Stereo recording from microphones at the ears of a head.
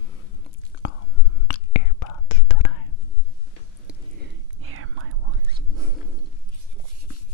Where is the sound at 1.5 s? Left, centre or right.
Left.